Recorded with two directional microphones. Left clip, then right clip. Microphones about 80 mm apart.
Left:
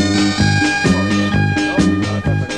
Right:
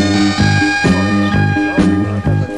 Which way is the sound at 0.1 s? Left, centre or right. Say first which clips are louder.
Right 2 dB; right.